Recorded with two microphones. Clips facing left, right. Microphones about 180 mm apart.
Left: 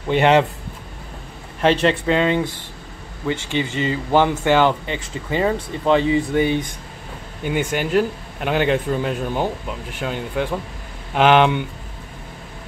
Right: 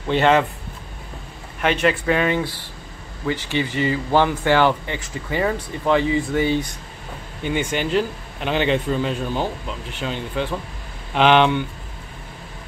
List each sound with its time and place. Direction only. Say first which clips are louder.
0.1 s speech: left 2 dB; 20° left (ahead or behind)
1.6 s speech: left 3 dB; 30° left (ahead or behind)
7.4 s speech: left 1 dB; 10° left (ahead or behind)